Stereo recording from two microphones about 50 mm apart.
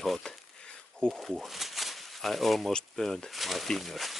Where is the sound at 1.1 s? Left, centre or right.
Centre.